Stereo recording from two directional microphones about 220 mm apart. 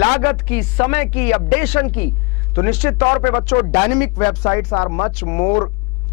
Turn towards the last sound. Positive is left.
turn(degrees=15)  # may be behind; listen again after turning